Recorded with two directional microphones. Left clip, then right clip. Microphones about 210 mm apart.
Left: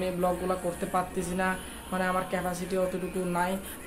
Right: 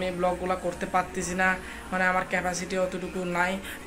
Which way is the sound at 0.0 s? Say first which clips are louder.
Right 2 dB; 10° left (ahead or behind).